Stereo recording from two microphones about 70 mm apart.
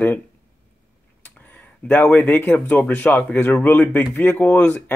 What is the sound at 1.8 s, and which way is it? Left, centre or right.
Speech, left.